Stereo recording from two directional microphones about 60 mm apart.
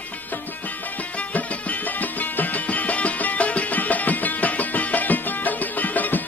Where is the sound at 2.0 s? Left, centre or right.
Left.